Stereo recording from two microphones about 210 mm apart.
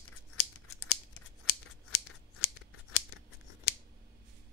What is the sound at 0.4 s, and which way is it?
Scissors, 90° left.